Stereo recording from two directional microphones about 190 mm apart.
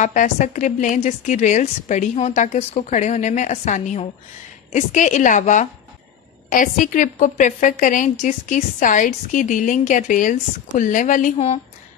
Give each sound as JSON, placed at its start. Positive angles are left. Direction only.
{"t": 0.0, "sound": "a woman's voice", "side_deg": 40}